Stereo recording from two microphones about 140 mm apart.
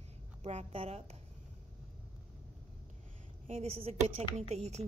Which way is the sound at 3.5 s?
50° right (ahead or behind).